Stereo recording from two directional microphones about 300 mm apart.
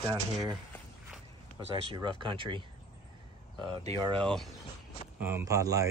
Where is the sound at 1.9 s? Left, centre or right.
Centre.